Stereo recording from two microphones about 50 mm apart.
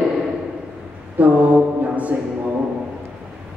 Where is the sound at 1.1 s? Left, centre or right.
Right.